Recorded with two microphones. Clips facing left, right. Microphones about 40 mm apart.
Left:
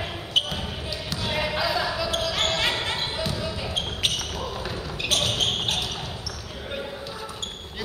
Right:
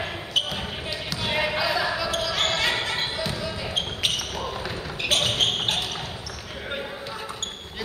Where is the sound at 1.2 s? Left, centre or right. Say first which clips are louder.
Right 1 dB; centre.